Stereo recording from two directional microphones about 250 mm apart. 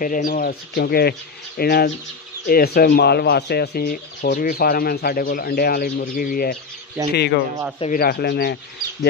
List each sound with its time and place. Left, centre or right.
0.0 s speech: left